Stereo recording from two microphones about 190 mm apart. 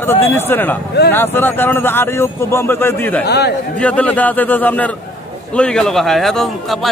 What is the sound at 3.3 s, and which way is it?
Speech, 60° left (ahead or behind).